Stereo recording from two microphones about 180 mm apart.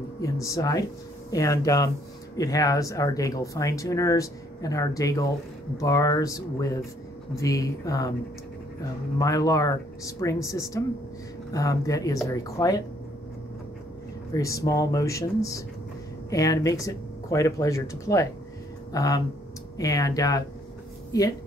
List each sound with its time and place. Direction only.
0.2 s speech: 20° left (ahead or behind)
9.2 s speech: 20° left (ahead or behind)
14.3 s speech: 20° left (ahead or behind)